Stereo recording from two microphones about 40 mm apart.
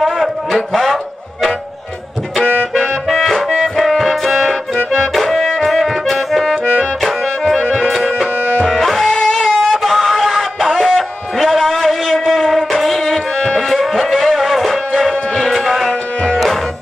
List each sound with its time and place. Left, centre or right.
0.2 s a sound: centre
2.7 s music: centre
3.5 s music: centre
6.5 s music: left
6.8 s music: centre
11.6 s a sound: centre
12.5 s music: centre
15.6 s tabla: centre